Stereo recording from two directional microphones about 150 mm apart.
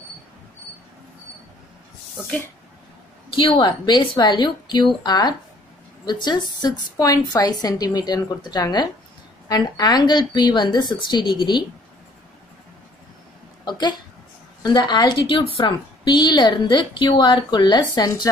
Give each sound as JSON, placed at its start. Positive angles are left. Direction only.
{"t": 3.3, "sound": "a woman's voice", "side_deg": 35}
{"t": 13.7, "sound": "a woman's voice", "side_deg": 30}